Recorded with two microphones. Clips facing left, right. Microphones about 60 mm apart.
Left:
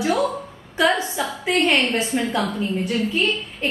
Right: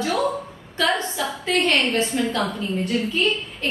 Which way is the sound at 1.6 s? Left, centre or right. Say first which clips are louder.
Left 1 dB; centre.